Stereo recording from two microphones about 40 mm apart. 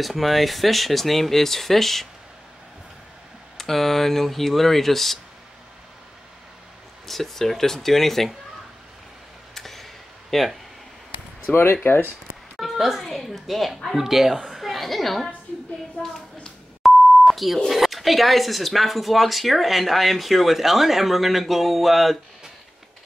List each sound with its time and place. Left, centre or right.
0.0 s speech: centre
3.5 s speech: centre
7.1 s speech: centre
9.5 s a sound: centre
10.3 s speech: centre
11.5 s speech: left
12.5 s a sound: centre
13.3 s a woman's voice: centre
16.0 s a sound: left
16.8 s beep: centre
17.6 s speech: centre